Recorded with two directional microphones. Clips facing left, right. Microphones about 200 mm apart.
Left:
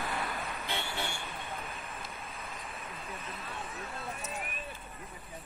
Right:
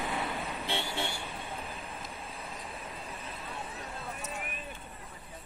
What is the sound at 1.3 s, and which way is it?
Vehicle, 30° right (ahead or behind).